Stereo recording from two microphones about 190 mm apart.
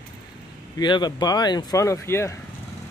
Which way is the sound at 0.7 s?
25° left (ahead or behind).